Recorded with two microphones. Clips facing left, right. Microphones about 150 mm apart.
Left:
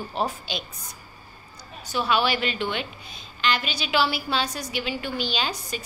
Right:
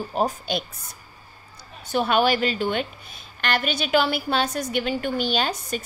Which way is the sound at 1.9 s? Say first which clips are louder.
Right 3 dB; 50° right (ahead or behind).